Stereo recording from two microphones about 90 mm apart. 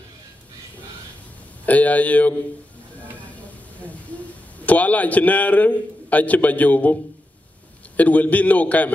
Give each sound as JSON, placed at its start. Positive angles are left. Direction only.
{"t": 1.7, "sound": "a man's voice", "side_deg": 15}
{"t": 4.6, "sound": "a man's voice", "side_deg": 15}